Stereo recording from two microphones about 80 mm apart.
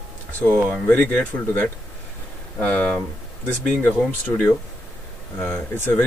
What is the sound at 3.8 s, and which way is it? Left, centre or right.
Speech, left.